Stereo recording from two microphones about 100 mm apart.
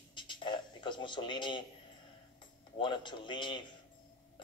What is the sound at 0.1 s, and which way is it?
Music, 55° left (ahead or behind).